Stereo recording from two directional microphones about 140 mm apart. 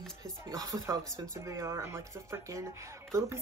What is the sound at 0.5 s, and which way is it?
Speech, 25° right (ahead or behind).